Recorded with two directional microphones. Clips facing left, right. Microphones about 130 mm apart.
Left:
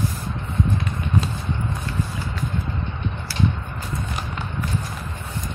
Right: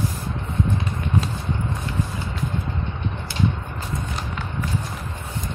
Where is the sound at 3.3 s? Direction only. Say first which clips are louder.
Left 1 dB; 20° right (ahead or behind).